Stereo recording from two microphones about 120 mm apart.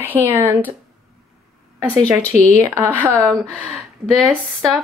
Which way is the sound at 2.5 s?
20° right (ahead or behind).